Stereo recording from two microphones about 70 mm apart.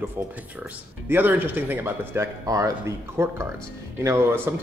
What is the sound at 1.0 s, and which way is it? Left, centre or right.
Speech, right.